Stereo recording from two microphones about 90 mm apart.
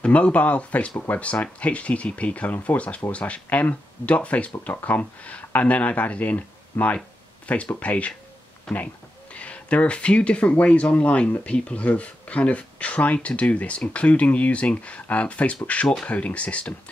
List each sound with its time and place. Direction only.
0.0 s speech: 15° left (ahead or behind)